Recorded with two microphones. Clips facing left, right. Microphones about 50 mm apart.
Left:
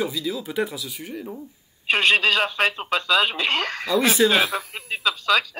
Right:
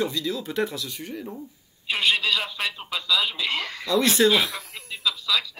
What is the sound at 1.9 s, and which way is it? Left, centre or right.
Speech, left.